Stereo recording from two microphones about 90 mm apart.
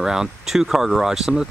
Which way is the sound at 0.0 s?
5° right (ahead or behind).